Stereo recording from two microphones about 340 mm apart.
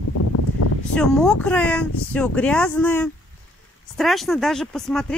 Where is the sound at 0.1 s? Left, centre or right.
Left.